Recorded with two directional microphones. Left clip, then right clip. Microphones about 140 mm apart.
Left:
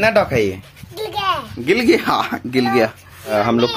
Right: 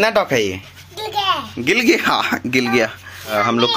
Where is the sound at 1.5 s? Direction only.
Centre (ahead or behind).